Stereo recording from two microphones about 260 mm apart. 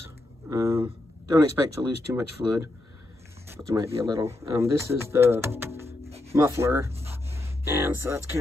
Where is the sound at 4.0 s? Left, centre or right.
Centre.